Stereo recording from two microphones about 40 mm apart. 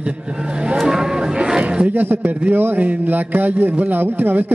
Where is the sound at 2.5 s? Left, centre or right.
Right.